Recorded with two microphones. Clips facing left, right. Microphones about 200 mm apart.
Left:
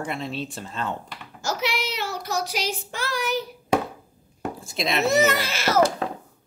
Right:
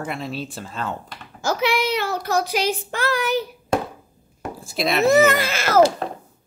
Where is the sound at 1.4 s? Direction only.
55° right (ahead or behind).